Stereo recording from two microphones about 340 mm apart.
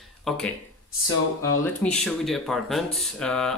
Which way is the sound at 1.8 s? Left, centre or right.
Centre.